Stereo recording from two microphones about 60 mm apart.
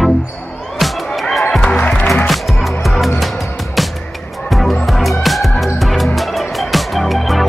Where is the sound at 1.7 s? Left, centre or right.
Centre.